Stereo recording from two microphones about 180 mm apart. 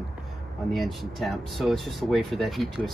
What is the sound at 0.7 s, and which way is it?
Speech, centre (ahead or behind).